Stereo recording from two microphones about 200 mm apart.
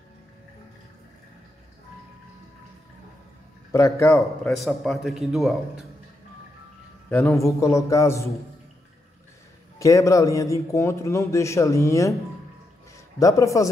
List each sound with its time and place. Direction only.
3.7 s a man's voice: 15° left (ahead or behind)
4.5 s a man's voice: centre (ahead or behind)
7.1 s a man's voice: 10° left (ahead or behind)
9.8 s a man's voice: 15° left (ahead or behind)